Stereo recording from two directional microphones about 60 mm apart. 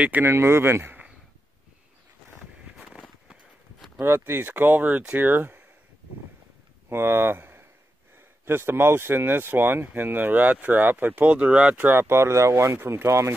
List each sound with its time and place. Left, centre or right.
0.2 s speech: right
4.0 s speech: right
6.9 s speech: right
11.9 s speech: right